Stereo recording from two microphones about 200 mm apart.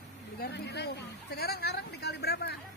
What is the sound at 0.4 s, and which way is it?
A woman's voice, 60° left (ahead or behind).